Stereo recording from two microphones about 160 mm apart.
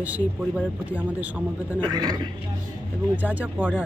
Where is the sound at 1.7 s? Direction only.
25° right (ahead or behind).